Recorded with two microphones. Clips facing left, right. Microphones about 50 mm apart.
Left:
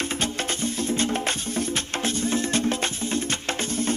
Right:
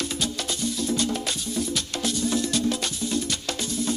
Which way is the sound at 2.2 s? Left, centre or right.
Left.